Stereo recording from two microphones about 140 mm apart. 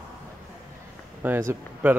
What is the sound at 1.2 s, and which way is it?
Speech, 20° right (ahead or behind).